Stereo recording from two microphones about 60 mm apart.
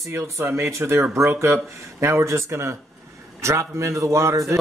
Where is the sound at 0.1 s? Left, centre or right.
Right.